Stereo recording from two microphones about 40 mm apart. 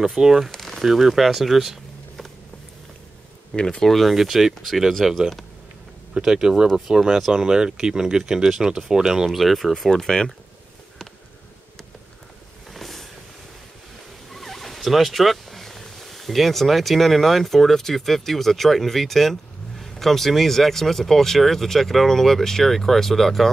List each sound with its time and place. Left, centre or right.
0.0 s speech: centre
0.5 s a sound: centre
0.8 s speech: centre
3.8 s speech: centre
4.1 s speech: centre
7.3 s speech: centre
9.2 s speech: centre
9.8 s speech: centre
12.7 s vehicle: centre
14.3 s speech: centre